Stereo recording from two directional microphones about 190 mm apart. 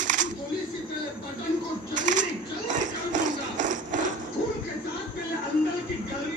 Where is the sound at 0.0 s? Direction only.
45° right (ahead or behind).